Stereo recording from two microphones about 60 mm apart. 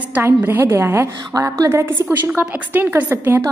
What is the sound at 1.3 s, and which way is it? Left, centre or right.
Speech, right.